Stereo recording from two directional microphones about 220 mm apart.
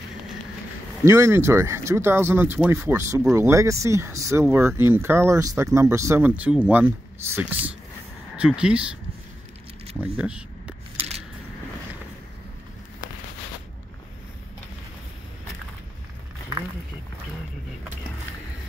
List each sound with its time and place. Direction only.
1.0 s speech: 15° right (ahead or behind)
9.9 s speech: 10° right (ahead or behind)
11.0 s a sound: 30° right (ahead or behind)